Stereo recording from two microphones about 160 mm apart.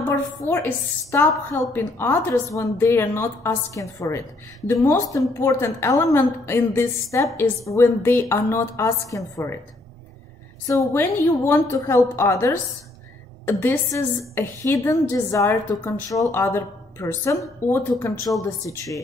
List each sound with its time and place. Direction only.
0.1 s a woman's voice: 15° left (ahead or behind)
10.7 s a woman's voice: 20° left (ahead or behind)